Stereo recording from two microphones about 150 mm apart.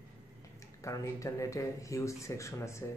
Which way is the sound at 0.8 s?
20° left (ahead or behind).